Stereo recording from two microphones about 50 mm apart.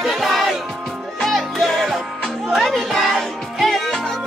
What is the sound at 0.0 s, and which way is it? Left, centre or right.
Music, centre.